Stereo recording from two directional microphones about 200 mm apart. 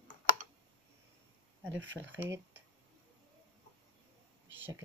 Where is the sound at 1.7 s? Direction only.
65° right (ahead or behind).